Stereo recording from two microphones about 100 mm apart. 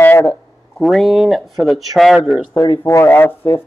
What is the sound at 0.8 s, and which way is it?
Speech, centre (ahead or behind).